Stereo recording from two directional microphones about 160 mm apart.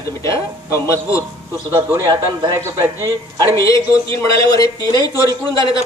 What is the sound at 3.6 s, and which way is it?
Speech, 20° left (ahead or behind).